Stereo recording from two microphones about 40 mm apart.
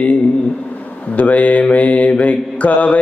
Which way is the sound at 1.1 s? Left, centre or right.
Left.